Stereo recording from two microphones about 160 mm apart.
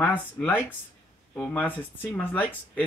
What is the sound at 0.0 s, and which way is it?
Speech, 10° left (ahead or behind).